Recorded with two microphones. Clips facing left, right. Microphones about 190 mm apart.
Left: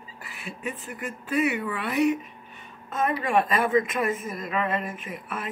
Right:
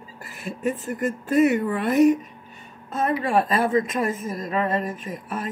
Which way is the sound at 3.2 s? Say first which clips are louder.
Right 2 dB; 35° right (ahead or behind).